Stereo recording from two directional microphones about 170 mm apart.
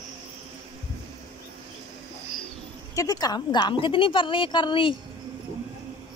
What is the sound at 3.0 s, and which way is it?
A woman's voice, 20° left (ahead or behind).